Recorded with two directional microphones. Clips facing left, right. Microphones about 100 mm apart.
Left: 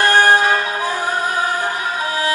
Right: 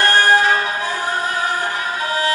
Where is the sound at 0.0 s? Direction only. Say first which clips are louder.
Left 1 dB; 15° left (ahead or behind).